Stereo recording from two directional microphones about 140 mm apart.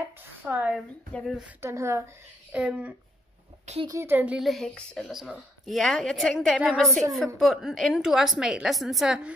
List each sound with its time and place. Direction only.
0.5 s speech: 10° right (ahead or behind)
2.5 s speech: 10° right (ahead or behind)
3.8 s speech: 20° right (ahead or behind)
4.4 s a woman's voice: centre (ahead or behind)